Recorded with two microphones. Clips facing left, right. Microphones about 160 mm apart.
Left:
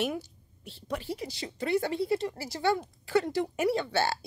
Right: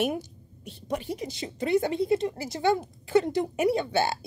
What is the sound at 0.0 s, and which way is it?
A woman's voice, 20° right (ahead or behind).